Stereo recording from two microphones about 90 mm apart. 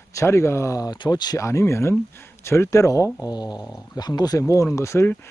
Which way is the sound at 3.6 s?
35° left (ahead or behind).